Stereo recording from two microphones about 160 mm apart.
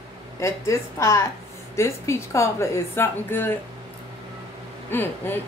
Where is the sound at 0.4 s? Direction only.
20° left (ahead or behind).